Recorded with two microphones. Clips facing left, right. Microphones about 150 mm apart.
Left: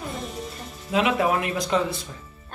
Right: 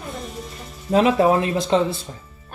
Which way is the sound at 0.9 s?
35° right (ahead or behind).